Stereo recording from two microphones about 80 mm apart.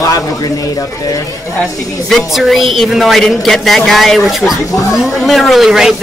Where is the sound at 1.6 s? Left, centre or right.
Centre.